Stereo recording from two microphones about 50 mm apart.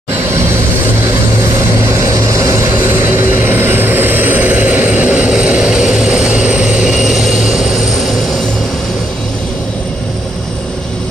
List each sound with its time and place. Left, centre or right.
1.0 s vehicle: right
2.7 s vehicle: right
5.3 s vehicle: right